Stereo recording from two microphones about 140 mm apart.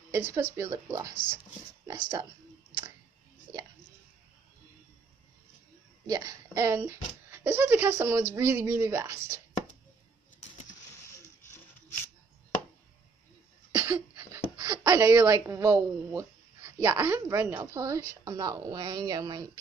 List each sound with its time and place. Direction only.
0.1 s a woman's voice: 20° right (ahead or behind)
6.0 s a woman's voice: 25° right (ahead or behind)
13.9 s a sound: 20° right (ahead or behind)
17.6 s a woman's voice: 20° right (ahead or behind)